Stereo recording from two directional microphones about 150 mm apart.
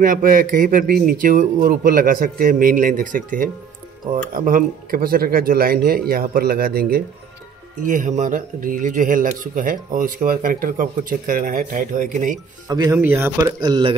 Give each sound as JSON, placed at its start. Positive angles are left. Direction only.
{"t": 0.0, "sound": "a man's voice", "side_deg": -65}
{"t": 7.8, "sound": "a man's voice", "side_deg": -60}
{"t": 12.6, "sound": "speech", "side_deg": -25}
{"t": 12.9, "sound": "speech", "side_deg": -15}